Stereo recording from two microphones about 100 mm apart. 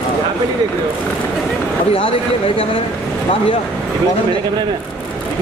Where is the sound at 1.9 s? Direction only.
65° left (ahead or behind).